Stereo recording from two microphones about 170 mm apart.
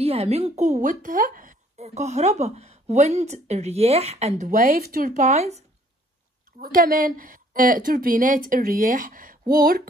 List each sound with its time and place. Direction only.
0.0 s a woman's voice: 35° right (ahead or behind)
4.5 s speech: 55° right (ahead or behind)
6.6 s a woman's voice: 55° right (ahead or behind)